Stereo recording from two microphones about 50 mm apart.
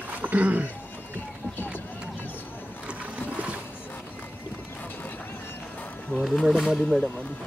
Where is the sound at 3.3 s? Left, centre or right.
Right.